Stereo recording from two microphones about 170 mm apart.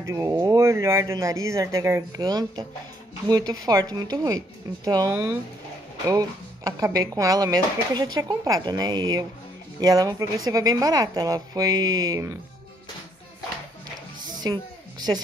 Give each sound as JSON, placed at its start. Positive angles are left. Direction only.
{"t": 0.0, "sound": "speech", "side_deg": -20}
{"t": 14.4, "sound": "music", "side_deg": -25}